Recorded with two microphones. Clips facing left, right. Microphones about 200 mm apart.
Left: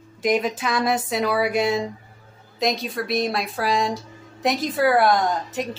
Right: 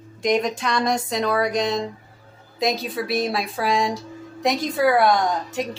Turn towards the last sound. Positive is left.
turn(degrees=0)  # may be behind; listen again after turning